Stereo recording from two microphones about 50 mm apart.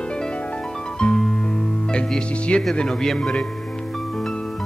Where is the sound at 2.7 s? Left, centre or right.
Centre.